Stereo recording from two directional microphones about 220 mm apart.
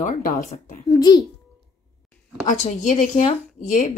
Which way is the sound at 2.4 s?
35° left (ahead or behind).